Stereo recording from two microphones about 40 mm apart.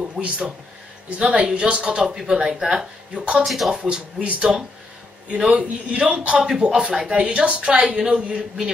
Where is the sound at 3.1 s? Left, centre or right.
Right.